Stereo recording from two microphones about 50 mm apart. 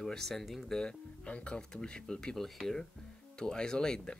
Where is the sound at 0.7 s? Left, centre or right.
Centre.